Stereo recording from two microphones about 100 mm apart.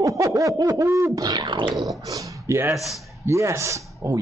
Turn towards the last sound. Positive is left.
turn(degrees=-30)  # may be behind; listen again after turning